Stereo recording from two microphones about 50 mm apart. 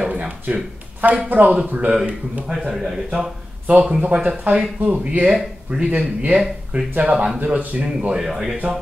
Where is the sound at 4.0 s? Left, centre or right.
Right.